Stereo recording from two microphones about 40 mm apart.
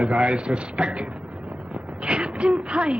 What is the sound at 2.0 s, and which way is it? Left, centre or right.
Gasp, right.